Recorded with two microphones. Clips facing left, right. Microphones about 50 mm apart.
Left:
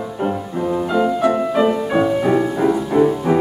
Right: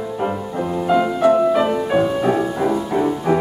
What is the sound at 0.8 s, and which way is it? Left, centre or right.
Music, centre.